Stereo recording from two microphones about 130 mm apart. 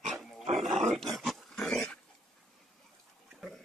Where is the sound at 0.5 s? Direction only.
65° right (ahead or behind).